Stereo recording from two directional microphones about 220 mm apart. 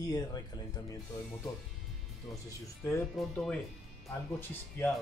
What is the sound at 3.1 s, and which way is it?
Speech, 5° left (ahead or behind).